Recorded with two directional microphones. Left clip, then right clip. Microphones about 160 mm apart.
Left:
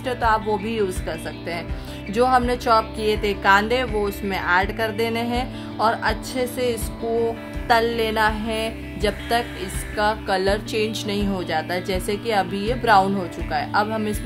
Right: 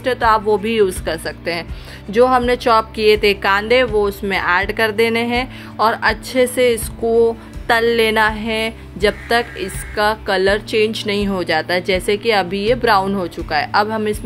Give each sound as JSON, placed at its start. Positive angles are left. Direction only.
{"t": 0.0, "sound": "speech", "side_deg": -15}